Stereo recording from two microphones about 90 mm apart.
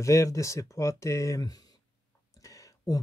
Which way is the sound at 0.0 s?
35° left (ahead or behind).